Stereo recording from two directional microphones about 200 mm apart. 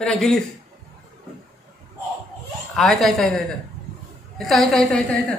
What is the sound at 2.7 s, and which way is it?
Speech, centre (ahead or behind).